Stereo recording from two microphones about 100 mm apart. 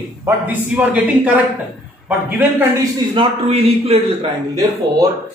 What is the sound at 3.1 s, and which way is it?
A man's voice, 70° right (ahead or behind).